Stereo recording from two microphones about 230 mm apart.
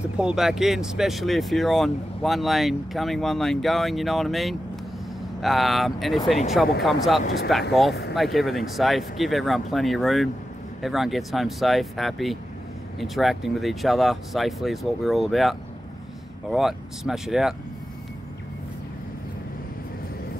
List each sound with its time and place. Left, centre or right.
0.2 s speech: centre